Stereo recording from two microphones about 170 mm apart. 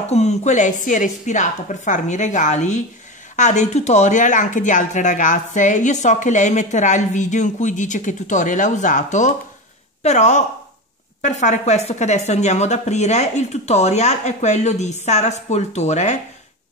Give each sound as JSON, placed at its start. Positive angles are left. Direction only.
{"t": 0.1, "sound": "a woman's voice", "side_deg": 40}